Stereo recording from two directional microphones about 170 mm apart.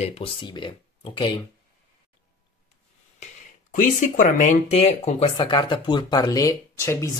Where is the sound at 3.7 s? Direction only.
50° left (ahead or behind); by 7.1 s 15° left (ahead or behind).